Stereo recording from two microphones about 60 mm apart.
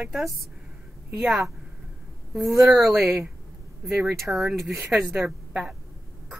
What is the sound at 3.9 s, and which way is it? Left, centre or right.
Speech, centre.